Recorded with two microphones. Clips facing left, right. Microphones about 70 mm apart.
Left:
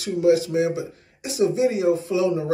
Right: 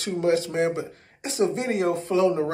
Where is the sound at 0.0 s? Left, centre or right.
Right.